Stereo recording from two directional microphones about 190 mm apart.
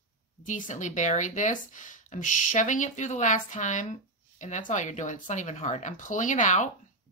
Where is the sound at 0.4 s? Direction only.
40° left (ahead or behind).